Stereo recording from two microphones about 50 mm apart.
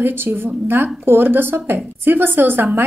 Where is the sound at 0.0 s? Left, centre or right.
Right.